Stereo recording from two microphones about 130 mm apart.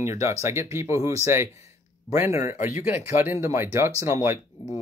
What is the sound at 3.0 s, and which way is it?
Speech, 20° right (ahead or behind).